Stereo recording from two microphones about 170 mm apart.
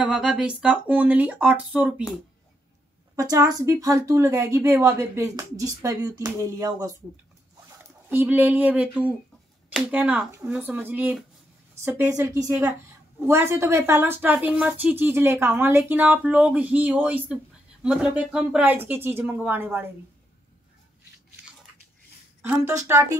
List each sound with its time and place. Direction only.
0.0 s speech: 5° right (ahead or behind)
3.2 s a woman's voice: 20° right (ahead or behind)
22.4 s a woman's voice: 10° right (ahead or behind)